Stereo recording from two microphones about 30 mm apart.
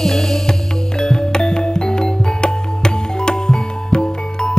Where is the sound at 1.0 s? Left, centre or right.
Left.